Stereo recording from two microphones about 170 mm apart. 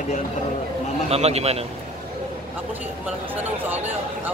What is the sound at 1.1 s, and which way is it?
Speech, 40° right (ahead or behind).